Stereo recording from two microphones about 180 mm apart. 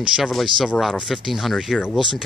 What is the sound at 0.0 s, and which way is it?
Speech, 5° right (ahead or behind).